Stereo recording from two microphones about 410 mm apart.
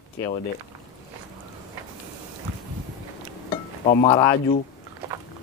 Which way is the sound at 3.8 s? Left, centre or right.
Centre.